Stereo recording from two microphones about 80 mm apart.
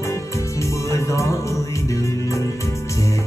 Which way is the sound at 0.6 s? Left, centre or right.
Left.